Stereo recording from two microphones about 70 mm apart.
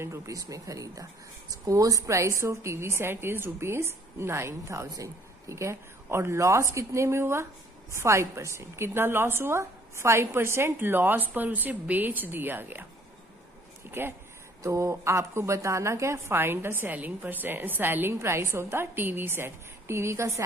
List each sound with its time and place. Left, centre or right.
0.0 s a woman's voice: right
14.0 s a woman's voice: right
14.6 s a woman's voice: right